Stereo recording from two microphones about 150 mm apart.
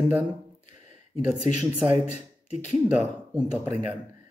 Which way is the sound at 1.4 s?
50° left (ahead or behind).